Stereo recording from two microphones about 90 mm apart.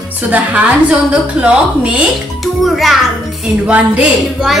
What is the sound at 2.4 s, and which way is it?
Speech, centre (ahead or behind).